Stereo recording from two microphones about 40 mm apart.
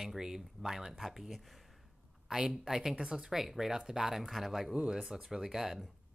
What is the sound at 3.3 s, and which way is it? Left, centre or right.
Speech, centre.